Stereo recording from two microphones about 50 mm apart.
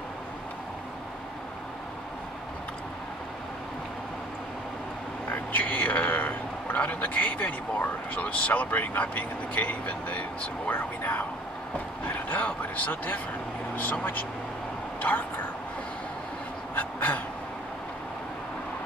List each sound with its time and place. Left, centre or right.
5.3 s speech: left
15.0 s speech: left
16.7 s a sound: left